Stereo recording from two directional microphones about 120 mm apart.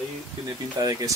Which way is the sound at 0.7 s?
30° right (ahead or behind).